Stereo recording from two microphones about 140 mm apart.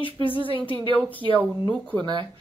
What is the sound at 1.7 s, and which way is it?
Speech, 10° left (ahead or behind).